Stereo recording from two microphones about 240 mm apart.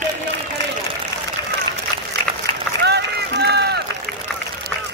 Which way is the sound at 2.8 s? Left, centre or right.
Right.